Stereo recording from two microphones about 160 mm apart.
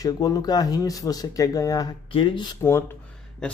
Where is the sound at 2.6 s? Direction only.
15° left (ahead or behind).